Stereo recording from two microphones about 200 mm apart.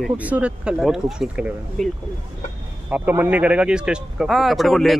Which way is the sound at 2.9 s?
10° right (ahead or behind).